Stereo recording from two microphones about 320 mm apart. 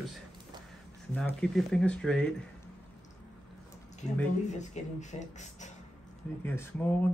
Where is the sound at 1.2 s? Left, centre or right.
Centre.